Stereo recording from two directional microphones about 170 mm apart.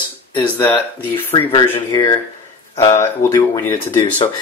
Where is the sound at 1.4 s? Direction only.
20° left (ahead or behind).